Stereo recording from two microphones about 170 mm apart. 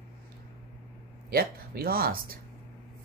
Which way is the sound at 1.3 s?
60° right (ahead or behind).